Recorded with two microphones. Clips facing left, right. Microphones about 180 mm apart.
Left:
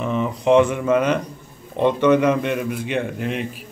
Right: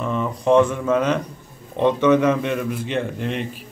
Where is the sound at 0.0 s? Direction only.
15° left (ahead or behind).